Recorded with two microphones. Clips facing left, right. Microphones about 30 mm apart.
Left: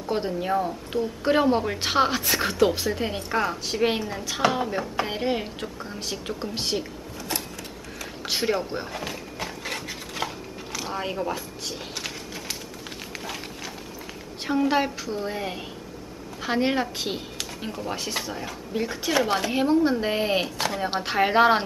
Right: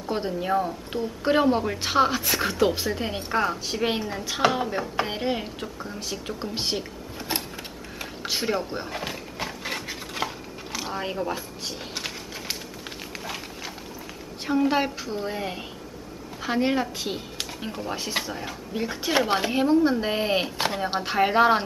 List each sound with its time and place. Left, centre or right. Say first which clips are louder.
0.0 s a woman's voice: left 1 dB; centre
4.2 s a woman's voice: right 2 dB; centre
4.5 s a woman's voice: even; centre
6.4 s a woman's voice: even; centre
7.2 s a sound: right 1 dB; right
8.3 s a woman's voice: left 1 dB; centre
8.9 s a sound: right 1 dB; centre
13.1 s a sound: even; centre
14.4 s a woman's voice: even; centre
14.8 s a woman's voice: left 1 dB; centre
16.3 s a woman's voice: even; centre
17.8 s a woman's voice: right 1 dB; centre
19.5 s a woman's voice: right 1 dB; centre
20.8 s a woman's voice: even; centre